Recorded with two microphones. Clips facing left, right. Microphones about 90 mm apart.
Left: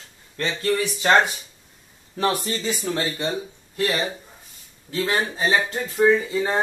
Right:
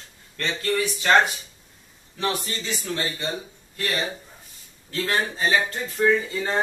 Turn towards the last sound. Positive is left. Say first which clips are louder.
# left 3 dB
turn(degrees=10)  # may be behind; listen again after turning